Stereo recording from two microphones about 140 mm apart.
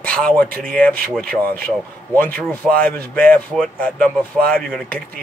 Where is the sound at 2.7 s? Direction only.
90° right.